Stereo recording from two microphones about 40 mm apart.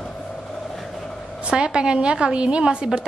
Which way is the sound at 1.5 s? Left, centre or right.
Right.